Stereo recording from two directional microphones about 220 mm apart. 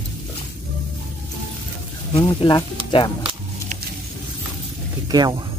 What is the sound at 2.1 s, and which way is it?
Speech, 20° left (ahead or behind).